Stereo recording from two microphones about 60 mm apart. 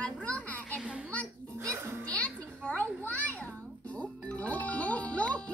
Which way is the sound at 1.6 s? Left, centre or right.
Right.